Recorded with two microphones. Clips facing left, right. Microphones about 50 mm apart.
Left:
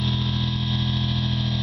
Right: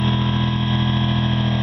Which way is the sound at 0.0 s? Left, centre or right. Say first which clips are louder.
Right 6 dB; right.